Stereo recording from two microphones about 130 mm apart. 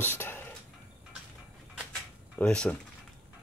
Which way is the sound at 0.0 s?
15° left (ahead or behind).